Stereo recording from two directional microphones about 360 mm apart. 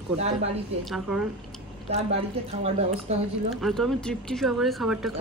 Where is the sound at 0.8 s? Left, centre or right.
Centre.